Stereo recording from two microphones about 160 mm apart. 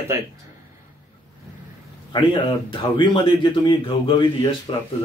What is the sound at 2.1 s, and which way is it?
A man's voice, 30° left (ahead or behind).